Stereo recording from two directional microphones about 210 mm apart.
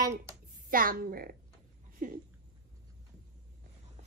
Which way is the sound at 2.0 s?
40° right (ahead or behind).